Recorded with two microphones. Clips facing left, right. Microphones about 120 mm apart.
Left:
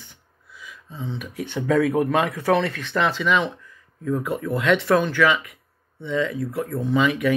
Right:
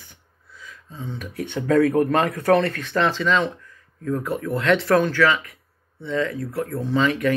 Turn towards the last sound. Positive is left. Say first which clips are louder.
# even
turn(degrees=10)  # may be behind; listen again after turning